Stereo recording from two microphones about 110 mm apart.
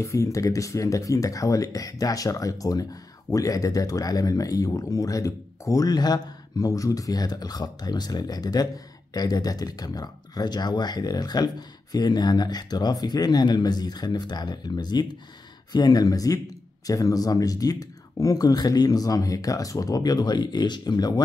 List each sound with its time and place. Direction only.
0.0 s speech: 30° left (ahead or behind)